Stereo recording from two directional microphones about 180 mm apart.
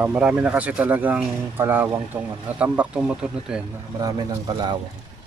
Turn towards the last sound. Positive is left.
turn(degrees=-25)  # may be behind; listen again after turning